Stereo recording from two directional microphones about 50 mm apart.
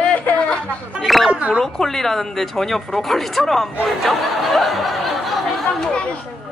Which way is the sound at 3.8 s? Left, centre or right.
Centre.